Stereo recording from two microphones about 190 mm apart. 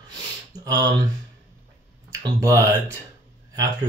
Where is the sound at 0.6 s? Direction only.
20° right (ahead or behind).